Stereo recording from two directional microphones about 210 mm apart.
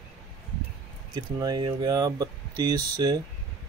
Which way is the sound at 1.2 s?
20° right (ahead or behind).